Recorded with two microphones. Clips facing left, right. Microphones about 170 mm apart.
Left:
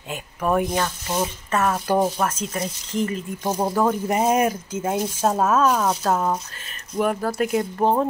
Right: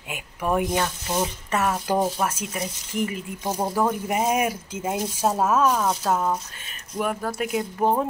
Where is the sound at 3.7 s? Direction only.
5° right (ahead or behind).